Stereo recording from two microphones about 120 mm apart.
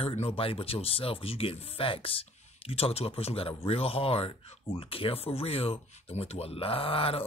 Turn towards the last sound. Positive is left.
turn(degrees=50)  # may be behind; listen again after turning